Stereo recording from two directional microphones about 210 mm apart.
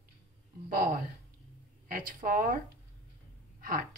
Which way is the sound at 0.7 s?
45° right (ahead or behind).